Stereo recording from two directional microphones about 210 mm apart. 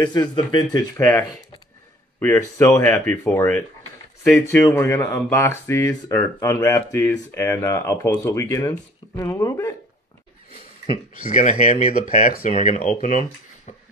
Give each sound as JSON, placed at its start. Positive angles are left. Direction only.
{"t": 0.0, "sound": "speech", "side_deg": 20}
{"t": 11.2, "sound": "speech", "side_deg": 35}